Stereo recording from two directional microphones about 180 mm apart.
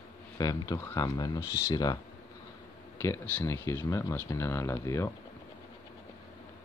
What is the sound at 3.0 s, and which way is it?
Speech, 15° left (ahead or behind).